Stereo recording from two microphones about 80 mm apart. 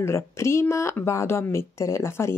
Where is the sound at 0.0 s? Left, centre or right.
Left.